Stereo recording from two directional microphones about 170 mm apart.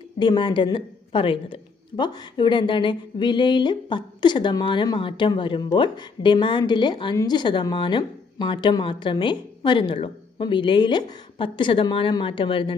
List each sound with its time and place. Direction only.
0.2 s a woman's voice: 25° left (ahead or behind)